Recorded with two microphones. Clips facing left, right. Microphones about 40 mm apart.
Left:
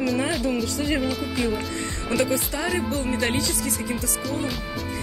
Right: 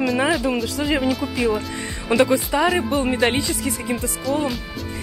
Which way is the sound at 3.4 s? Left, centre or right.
Centre.